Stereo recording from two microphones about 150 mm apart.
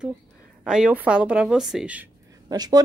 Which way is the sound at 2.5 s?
25° right (ahead or behind).